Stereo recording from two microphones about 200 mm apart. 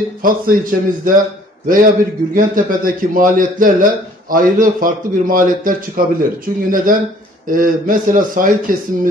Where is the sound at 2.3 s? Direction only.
45° right (ahead or behind).